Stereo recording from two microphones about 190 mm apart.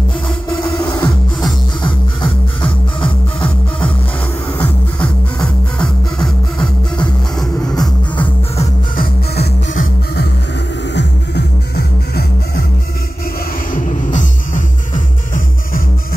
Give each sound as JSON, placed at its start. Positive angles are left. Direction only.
{"t": 0.7, "sound": "music", "side_deg": 20}
{"t": 4.6, "sound": "music", "side_deg": 5}
{"t": 8.9, "sound": "music", "side_deg": 55}
{"t": 13.7, "sound": "music", "side_deg": 45}